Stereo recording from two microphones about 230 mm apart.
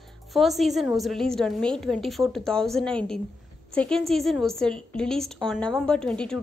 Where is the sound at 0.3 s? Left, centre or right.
Centre.